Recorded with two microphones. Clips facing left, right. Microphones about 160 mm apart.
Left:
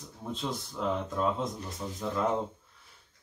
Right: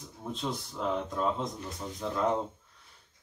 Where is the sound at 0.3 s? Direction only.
Centre (ahead or behind).